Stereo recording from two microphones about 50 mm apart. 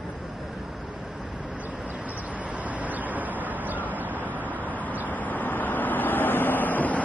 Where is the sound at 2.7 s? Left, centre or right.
Right.